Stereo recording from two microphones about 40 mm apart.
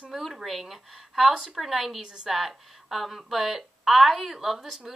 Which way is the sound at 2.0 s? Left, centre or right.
Centre.